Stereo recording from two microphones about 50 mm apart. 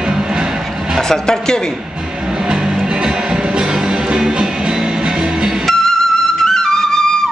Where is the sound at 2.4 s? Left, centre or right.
Centre.